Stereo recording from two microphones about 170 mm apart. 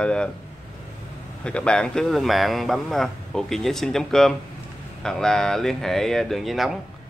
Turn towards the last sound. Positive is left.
turn(degrees=0)  # may be behind; listen again after turning